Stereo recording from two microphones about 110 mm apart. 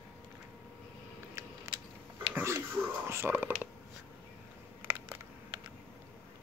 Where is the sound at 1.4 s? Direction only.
25° right (ahead or behind).